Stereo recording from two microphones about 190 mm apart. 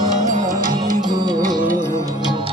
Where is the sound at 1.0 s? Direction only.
20° right (ahead or behind).